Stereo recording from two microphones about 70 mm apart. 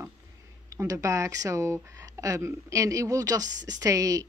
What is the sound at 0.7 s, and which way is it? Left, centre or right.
A woman's voice, right.